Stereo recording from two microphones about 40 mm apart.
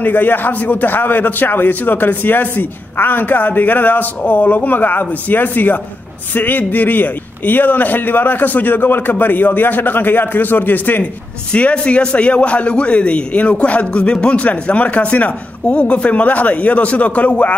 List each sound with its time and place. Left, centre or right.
0.0 s a man's voice: left
11.5 s a man's voice: left